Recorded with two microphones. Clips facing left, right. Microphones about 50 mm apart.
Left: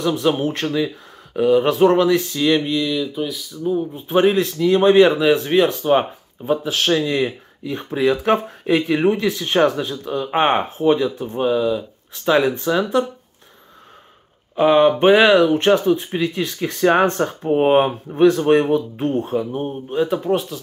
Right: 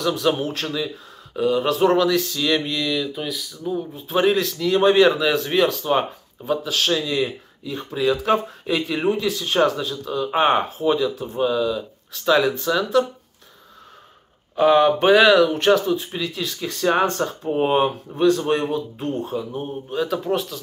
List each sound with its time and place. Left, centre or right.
0.0 s speech: left
3.9 s speech: left
14.5 s speech: left
20.3 s speech: centre